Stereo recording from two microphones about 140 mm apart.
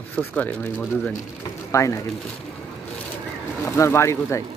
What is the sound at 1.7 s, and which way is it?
Speech, 20° left (ahead or behind).